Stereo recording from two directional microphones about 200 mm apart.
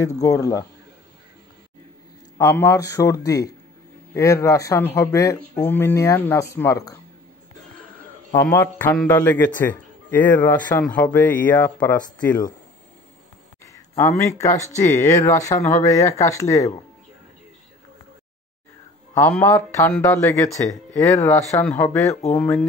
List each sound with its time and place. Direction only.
0.2 s speech: 15° left (ahead or behind)
2.3 s speech: 15° left (ahead or behind)
8.4 s speech: 10° left (ahead or behind)
13.9 s speech: 15° left (ahead or behind)
19.1 s speech: 10° left (ahead or behind)